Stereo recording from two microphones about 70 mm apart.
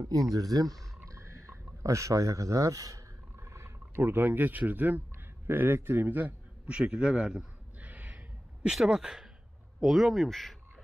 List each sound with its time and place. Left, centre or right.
0.1 s speech: right
1.0 s a sound: right
3.3 s a man's voice: right; by 7.4 s centre
7.8 s gasp: right
8.7 s speech: centre